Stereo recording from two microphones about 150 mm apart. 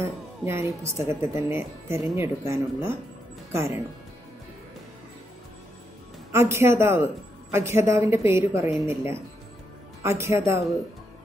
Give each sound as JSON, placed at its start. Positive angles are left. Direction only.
{"t": 0.0, "sound": "a woman's voice", "side_deg": -15}
{"t": 6.3, "sound": "a woman's voice", "side_deg": -15}
{"t": 10.0, "sound": "a woman's voice", "side_deg": -15}